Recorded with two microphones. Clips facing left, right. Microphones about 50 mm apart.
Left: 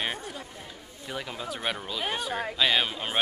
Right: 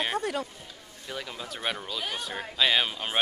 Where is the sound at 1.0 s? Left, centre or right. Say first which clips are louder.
Left 2 dB; centre.